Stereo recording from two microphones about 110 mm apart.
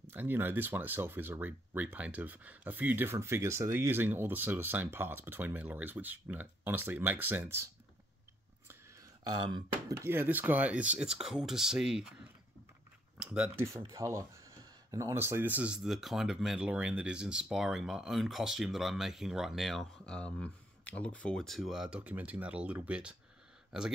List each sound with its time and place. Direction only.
0.1 s speech: 20° right (ahead or behind)
9.3 s speech: 40° right (ahead or behind)
9.9 s speech: 20° right (ahead or behind)
13.2 s speech: 10° right (ahead or behind)
13.6 s speech: 25° right (ahead or behind); by 23.9 s 5° right (ahead or behind)